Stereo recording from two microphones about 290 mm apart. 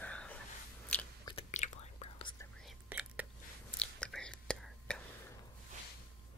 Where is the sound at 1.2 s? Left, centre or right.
Left.